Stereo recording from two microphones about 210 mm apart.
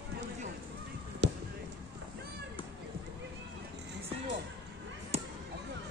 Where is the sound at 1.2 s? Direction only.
60° right (ahead or behind).